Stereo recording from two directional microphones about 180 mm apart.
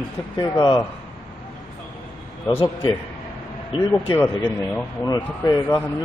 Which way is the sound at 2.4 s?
15° left (ahead or behind).